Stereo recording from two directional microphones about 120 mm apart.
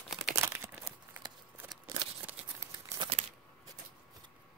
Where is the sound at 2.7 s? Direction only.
40° right (ahead or behind).